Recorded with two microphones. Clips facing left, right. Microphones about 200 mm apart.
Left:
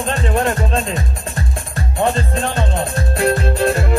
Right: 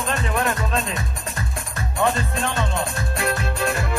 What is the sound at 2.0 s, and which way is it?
Speech, 35° left (ahead or behind).